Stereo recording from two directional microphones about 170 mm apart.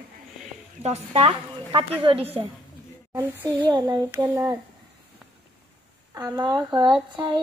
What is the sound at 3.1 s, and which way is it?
Speech, 15° right (ahead or behind).